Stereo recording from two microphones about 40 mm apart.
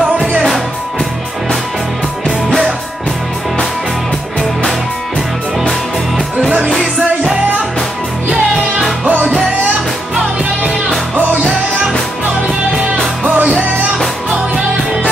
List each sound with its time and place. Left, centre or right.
6.8 s music: centre
9.0 s music: right
13.4 s music: right